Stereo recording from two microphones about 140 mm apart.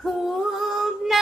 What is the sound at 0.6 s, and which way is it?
Female singing, centre (ahead or behind).